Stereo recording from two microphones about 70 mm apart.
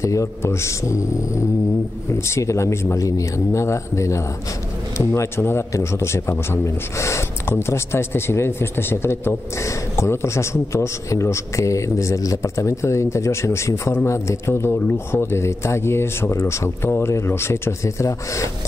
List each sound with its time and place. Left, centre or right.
0.0 s a man's voice: left